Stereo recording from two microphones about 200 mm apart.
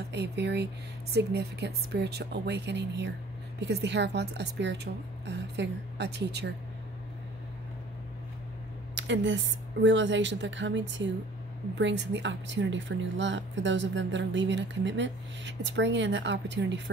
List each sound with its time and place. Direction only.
0.1 s speech: 60° right (ahead or behind)
8.9 s speech: 65° right (ahead or behind)